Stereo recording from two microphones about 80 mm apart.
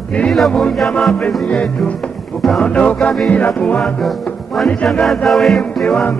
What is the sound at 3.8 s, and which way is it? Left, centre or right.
Music, centre.